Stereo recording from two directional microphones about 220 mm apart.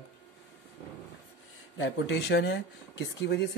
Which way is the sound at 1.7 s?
55° left (ahead or behind).